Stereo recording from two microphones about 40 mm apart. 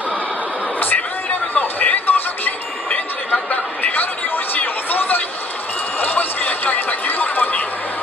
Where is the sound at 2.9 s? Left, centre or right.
Left.